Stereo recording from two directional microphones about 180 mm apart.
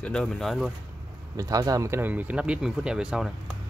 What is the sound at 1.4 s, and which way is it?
Speech, 20° right (ahead or behind).